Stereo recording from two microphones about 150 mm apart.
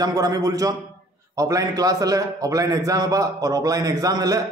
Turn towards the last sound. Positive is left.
turn(degrees=-25)  # may be behind; listen again after turning